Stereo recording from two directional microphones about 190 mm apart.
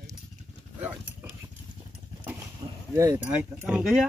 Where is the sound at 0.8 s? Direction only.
10° right (ahead or behind).